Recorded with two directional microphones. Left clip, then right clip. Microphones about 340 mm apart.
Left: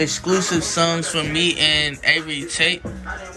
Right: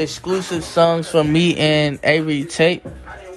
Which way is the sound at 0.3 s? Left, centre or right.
Centre.